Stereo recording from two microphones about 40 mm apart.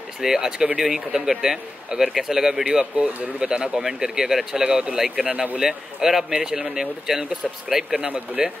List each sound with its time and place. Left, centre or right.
0.2 s speech: centre
2.6 s speech: centre